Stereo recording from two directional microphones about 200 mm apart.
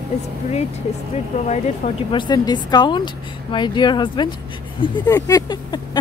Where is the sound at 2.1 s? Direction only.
20° left (ahead or behind).